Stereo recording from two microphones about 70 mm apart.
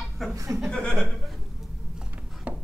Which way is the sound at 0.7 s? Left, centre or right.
Centre.